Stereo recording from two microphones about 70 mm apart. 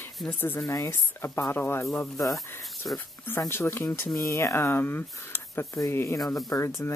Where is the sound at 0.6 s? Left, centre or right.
Left.